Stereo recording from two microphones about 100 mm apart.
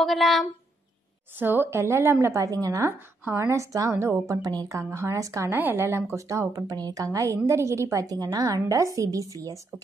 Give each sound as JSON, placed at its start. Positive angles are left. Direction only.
{"t": 0.0, "sound": "speech", "side_deg": 0}
{"t": 1.4, "sound": "speech", "side_deg": -20}
{"t": 4.4, "sound": "speech", "side_deg": -40}
{"t": 5.6, "sound": "speech", "side_deg": -20}